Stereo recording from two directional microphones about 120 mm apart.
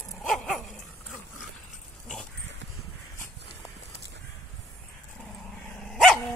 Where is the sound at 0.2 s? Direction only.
Centre (ahead or behind).